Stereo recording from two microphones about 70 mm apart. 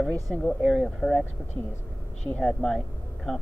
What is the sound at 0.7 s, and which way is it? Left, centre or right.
Speech, centre.